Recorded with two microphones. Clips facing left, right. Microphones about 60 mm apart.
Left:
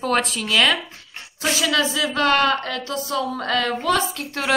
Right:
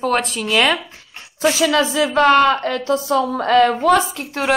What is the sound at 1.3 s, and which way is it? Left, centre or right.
A woman's voice, right.